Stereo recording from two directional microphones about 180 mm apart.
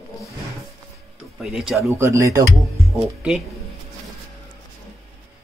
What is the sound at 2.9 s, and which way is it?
Speech, centre (ahead or behind).